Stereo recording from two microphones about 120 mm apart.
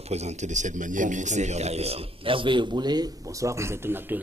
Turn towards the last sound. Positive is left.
turn(degrees=-20)  # may be behind; listen again after turning